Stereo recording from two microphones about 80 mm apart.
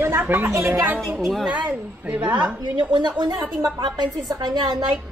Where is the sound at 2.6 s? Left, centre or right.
Right.